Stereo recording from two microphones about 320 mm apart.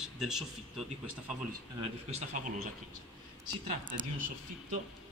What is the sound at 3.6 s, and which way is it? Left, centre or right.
Speech, right.